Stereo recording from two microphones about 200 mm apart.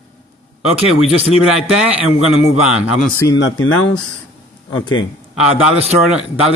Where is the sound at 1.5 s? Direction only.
5° right (ahead or behind).